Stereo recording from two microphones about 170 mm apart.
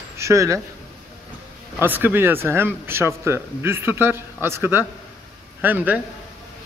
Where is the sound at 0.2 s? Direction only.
20° right (ahead or behind).